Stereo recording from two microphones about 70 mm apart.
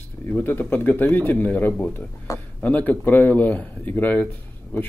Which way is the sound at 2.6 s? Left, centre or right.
Left.